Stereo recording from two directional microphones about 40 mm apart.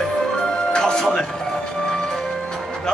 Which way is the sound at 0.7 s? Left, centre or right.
Centre.